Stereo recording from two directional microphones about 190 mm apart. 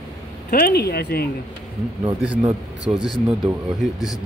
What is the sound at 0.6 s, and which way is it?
Speech, 55° left (ahead or behind).